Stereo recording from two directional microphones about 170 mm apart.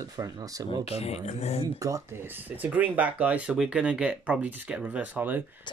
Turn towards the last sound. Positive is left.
turn(degrees=-10)  # may be behind; listen again after turning